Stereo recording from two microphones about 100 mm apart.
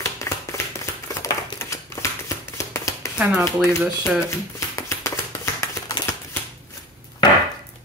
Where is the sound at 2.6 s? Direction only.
30° left (ahead or behind).